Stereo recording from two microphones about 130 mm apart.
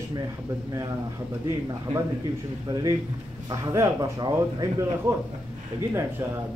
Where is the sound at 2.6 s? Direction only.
30° right (ahead or behind).